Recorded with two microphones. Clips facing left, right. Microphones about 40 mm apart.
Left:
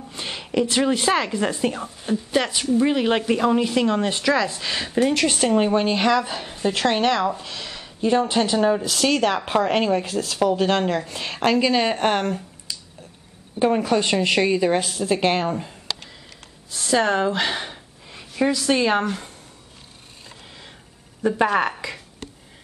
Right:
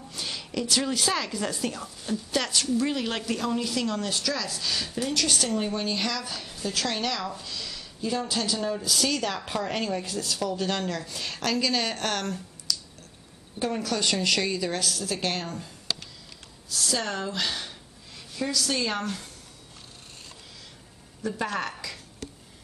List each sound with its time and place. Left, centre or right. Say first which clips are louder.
0.1 s a woman's voice: left 7 dB; left
21.2 s speech: left 10 dB; left
21.8 s a sound: left 6 dB; left